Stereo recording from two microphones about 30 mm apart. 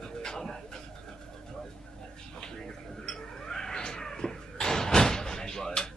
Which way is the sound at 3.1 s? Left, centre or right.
Left.